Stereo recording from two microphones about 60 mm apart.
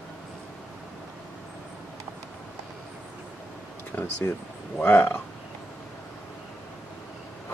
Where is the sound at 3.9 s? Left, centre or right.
Left.